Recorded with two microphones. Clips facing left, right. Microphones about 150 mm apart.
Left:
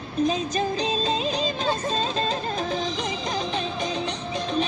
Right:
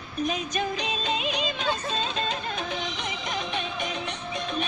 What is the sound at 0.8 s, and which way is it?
Music, 30° left (ahead or behind).